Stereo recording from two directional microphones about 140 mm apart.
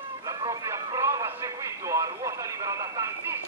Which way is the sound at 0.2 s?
25° right (ahead or behind).